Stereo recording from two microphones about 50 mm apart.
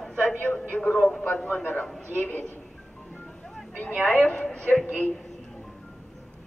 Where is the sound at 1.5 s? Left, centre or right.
Left.